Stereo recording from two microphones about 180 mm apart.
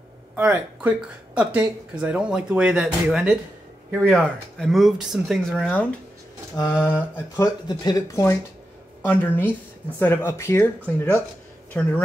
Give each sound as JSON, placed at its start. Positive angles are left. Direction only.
{"t": 0.4, "sound": "speech", "side_deg": -5}
{"t": 5.7, "sound": "speech", "side_deg": 10}
{"t": 6.5, "sound": "speech", "side_deg": 25}